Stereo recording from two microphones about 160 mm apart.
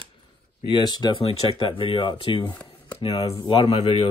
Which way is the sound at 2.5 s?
10° left (ahead or behind).